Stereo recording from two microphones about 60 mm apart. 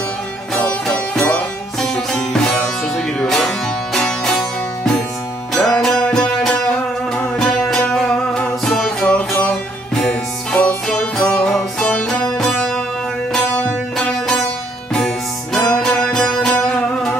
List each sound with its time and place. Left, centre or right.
0.6 s music: centre
1.8 s music: centre
6.5 s music: left
13.5 s music: left
13.9 s music: centre